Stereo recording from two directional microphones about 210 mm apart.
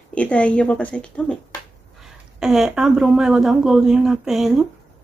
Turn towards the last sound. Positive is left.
turn(degrees=0)  # may be behind; listen again after turning